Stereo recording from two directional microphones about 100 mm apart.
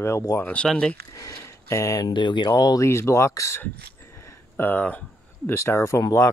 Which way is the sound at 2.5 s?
35° left (ahead or behind).